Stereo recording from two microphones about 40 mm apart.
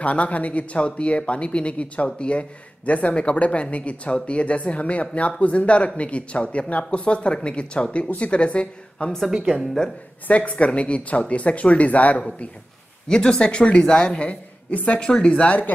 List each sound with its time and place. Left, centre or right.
0.0 s a woman's voice: left
9.3 s speech: centre
10.2 s speech: left
13.1 s a woman's voice: centre; by 15.7 s left